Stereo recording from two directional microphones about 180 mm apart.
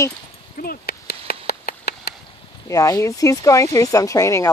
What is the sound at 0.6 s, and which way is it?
Horse, 60° left (ahead or behind).